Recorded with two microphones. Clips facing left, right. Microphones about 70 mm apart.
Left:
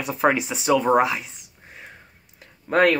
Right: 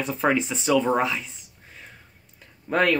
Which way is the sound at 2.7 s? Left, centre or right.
Centre.